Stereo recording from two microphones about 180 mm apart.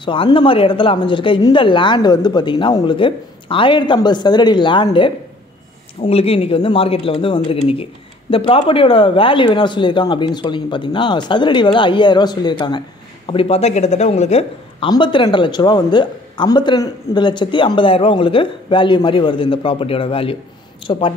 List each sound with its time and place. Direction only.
0.0 s speech: 30° left (ahead or behind)
14.9 s speech: 25° left (ahead or behind)